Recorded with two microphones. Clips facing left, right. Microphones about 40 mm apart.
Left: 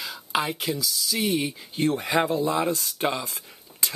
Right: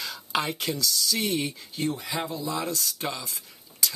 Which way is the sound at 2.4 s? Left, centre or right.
Left.